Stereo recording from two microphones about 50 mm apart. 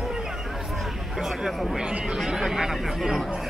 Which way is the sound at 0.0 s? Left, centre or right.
Centre.